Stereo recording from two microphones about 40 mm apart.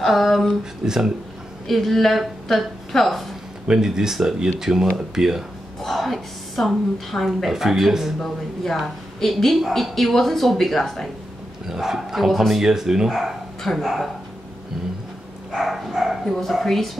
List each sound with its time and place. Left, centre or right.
0.0 s a woman's voice: centre
0.8 s speech: centre
1.7 s a woman's voice: centre
3.6 s speech: centre
5.8 s a woman's voice: centre
8.2 s a woman's voice: centre
11.7 s speech: centre
13.6 s a woman's voice: centre
15.5 s a woman's voice: centre